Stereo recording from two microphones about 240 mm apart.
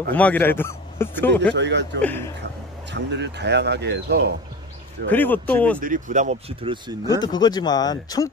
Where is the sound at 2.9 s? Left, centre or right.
Right.